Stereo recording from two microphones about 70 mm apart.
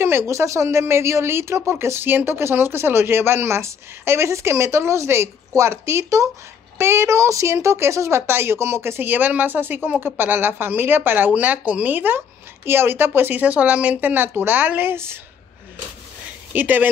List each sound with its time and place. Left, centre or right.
0.3 s speech: right
16.5 s speech: right